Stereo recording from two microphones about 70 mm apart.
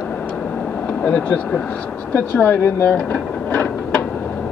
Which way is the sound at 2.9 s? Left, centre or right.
Centre.